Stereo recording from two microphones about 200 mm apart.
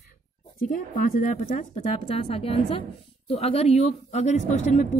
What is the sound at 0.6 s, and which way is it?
Speech, 40° left (ahead or behind).